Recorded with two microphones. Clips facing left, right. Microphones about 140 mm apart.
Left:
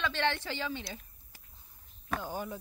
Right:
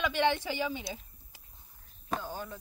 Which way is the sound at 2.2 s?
15° left (ahead or behind).